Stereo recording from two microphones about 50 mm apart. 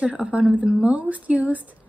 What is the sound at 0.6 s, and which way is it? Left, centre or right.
Speech, centre.